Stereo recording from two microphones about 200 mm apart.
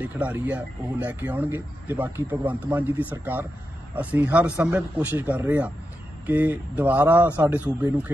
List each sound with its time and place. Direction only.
0.0 s speech: 5° right (ahead or behind)